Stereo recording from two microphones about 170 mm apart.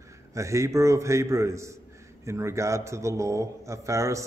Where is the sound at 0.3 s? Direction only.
20° right (ahead or behind).